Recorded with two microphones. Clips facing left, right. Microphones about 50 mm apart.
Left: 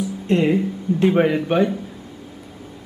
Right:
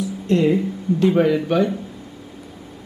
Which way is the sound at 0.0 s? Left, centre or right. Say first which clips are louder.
Right 1 dB; left.